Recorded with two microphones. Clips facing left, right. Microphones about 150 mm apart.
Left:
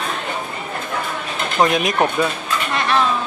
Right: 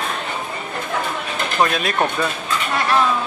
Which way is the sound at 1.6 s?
20° left (ahead or behind).